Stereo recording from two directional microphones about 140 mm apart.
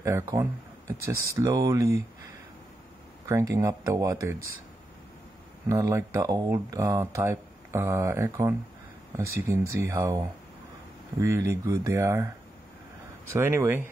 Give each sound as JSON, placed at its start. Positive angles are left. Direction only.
{"t": 0.0, "sound": "speech", "side_deg": -20}
{"t": 3.3, "sound": "speech", "side_deg": -25}
{"t": 5.7, "sound": "speech", "side_deg": -25}
{"t": 13.3, "sound": "speech", "side_deg": -20}